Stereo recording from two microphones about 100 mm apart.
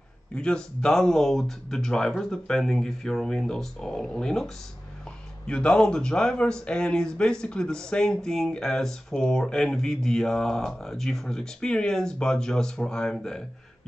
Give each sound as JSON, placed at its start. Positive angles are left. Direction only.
{"t": 0.4, "sound": "speech", "side_deg": 10}
{"t": 5.5, "sound": "speech", "side_deg": 10}